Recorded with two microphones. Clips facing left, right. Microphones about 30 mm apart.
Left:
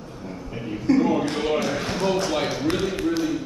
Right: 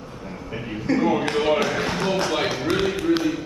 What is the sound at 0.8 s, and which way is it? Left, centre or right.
A man's voice, right.